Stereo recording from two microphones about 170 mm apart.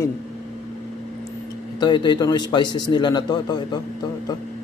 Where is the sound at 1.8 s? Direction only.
25° left (ahead or behind).